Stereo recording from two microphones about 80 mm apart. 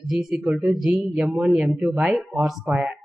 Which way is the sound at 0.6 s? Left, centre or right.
Centre.